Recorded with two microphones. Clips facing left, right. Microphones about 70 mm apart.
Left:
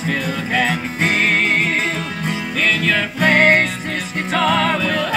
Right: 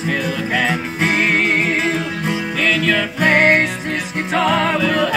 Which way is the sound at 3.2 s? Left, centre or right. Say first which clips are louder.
Even; centre.